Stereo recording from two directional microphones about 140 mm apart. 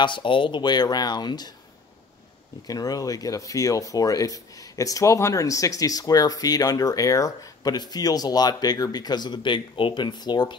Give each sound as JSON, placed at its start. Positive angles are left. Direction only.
{"t": 0.0, "sound": "speech", "side_deg": 35}
{"t": 2.6, "sound": "speech", "side_deg": 25}